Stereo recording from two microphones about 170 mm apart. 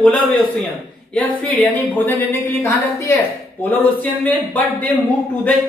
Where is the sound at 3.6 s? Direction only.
10° left (ahead or behind).